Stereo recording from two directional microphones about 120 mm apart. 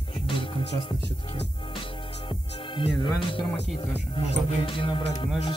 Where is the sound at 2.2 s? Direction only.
45° left (ahead or behind).